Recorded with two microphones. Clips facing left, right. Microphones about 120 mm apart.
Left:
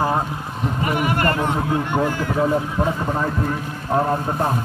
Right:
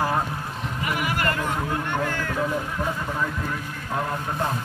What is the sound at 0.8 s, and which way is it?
Speech, 30° left (ahead or behind).